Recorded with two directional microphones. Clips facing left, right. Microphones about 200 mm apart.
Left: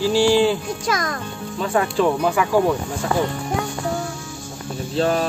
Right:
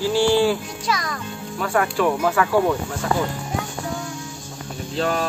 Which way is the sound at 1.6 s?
20° left (ahead or behind).